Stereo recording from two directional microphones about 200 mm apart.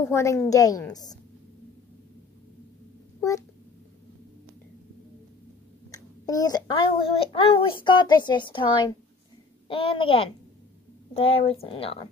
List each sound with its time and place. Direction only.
0.1 s a woman's voice: 15° left (ahead or behind)
3.2 s speech: 15° left (ahead or behind)
5.9 s a child's voice: 15° left (ahead or behind)